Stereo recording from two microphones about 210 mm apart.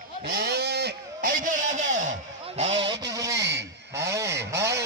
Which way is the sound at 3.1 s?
15° right (ahead or behind).